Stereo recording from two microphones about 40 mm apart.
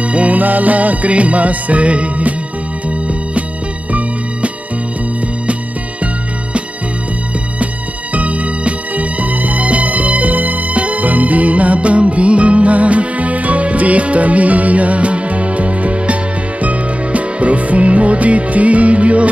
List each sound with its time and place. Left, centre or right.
0.0 s music: right
0.4 s music: right
8.1 s music: right